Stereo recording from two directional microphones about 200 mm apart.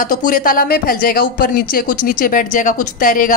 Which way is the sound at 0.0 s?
40° left (ahead or behind).